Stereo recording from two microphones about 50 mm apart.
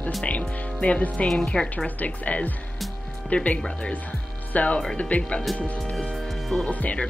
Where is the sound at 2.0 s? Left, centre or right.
Left.